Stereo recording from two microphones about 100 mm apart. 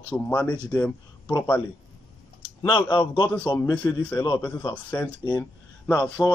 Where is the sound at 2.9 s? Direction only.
60° left (ahead or behind).